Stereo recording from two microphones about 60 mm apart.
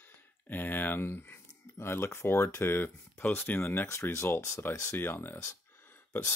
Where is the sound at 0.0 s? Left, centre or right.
Left.